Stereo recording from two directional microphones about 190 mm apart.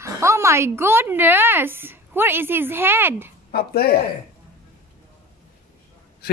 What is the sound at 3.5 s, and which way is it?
Speech, 55° left (ahead or behind).